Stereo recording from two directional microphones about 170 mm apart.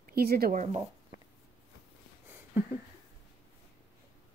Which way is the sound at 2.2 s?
10° right (ahead or behind).